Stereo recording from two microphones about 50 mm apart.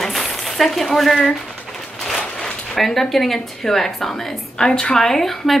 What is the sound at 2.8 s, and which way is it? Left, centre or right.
Speech, centre.